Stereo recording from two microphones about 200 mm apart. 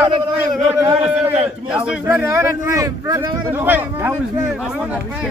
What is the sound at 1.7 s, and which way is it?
A man's voice, 5° right (ahead or behind).